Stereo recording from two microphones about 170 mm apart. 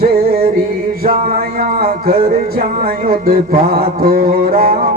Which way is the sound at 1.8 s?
60° right (ahead or behind).